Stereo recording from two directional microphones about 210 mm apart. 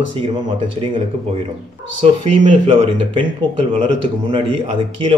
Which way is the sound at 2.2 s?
25° right (ahead or behind).